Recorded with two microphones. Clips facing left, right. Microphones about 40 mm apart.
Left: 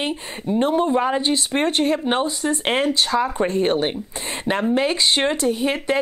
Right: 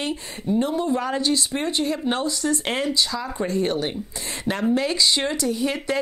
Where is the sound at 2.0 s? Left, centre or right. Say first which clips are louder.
Left 3 dB; left.